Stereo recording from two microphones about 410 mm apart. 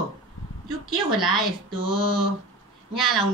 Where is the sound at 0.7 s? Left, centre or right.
Left.